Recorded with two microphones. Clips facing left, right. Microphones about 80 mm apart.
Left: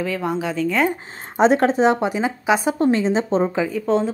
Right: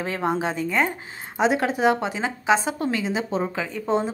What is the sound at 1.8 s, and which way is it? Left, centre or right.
Speech, left.